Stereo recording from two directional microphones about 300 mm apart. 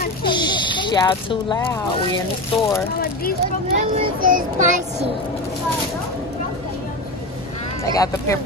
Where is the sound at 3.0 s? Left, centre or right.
Left.